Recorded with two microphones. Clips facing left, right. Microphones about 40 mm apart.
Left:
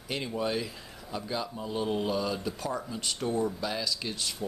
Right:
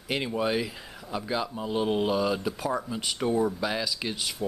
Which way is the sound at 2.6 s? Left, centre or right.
Centre.